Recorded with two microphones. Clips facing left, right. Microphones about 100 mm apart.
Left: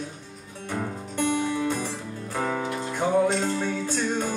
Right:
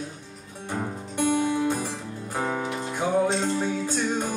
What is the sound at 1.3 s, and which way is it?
Music, 20° right (ahead or behind).